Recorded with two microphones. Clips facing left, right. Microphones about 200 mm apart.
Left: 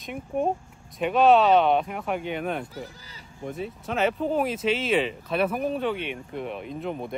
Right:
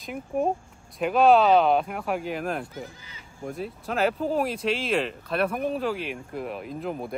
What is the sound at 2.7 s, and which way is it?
Speech, 35° left (ahead or behind).